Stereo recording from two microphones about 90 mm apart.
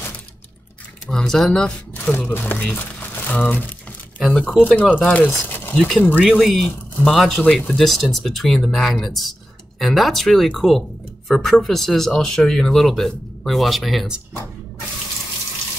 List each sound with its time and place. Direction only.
1.0 s speech: 5° left (ahead or behind)
2.1 s speech: 25° left (ahead or behind)
4.2 s speech: 10° left (ahead or behind)
6.4 s speech: centre (ahead or behind)